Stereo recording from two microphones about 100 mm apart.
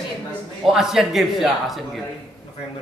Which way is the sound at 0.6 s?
5° right (ahead or behind).